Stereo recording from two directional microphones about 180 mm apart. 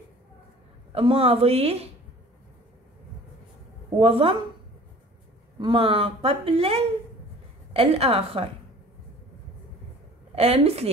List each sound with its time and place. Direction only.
0.9 s speech: 30° right (ahead or behind)
4.0 s speech: 30° right (ahead or behind)
5.6 s speech: 25° right (ahead or behind)
10.3 s speech: 35° right (ahead or behind)